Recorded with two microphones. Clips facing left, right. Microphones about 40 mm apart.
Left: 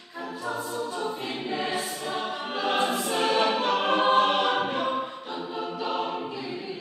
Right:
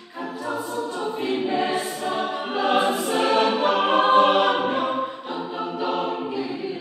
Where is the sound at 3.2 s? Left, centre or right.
Centre.